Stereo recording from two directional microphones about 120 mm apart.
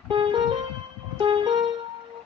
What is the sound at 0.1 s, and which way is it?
Music, 40° right (ahead or behind).